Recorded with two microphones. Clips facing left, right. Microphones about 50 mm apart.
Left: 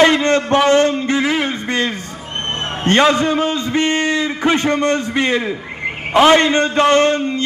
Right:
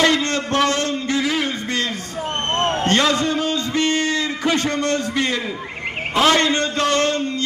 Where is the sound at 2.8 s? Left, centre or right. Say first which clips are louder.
Left 9 dB; left.